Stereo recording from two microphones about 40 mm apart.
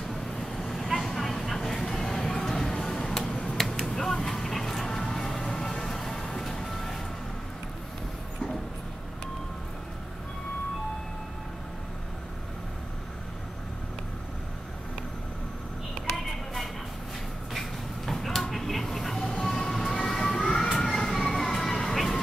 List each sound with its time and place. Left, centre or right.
0.1 s vehicle: centre
3.4 s finger snapping: centre
5.1 s music: centre
6.6 s vehicle: centre
17.5 s a sound: centre
20.8 s vehicle: centre